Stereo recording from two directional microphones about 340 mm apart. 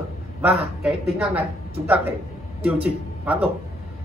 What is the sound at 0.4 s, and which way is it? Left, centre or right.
A man's voice, centre.